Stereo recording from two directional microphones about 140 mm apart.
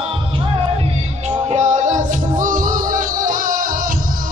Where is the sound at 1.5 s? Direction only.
55° right (ahead or behind); by 3.7 s 80° right.